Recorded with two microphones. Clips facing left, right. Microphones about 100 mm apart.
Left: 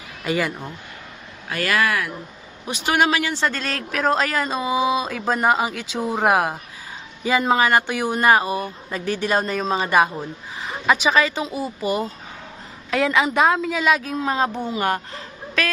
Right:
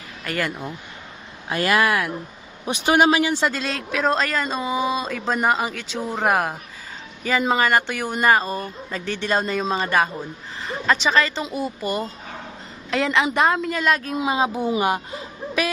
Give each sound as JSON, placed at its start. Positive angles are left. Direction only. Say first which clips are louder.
{"t": 0.2, "sound": "speech", "louder": "left 3 dB", "side_deg": 15}
{"t": 1.5, "sound": "a man's voice", "louder": "right 2 dB", "side_deg": -20}
{"t": 14.1, "sound": "speech", "louder": "even", "side_deg": -10}
{"t": 14.7, "sound": "a sound", "louder": "right 2 dB", "side_deg": -10}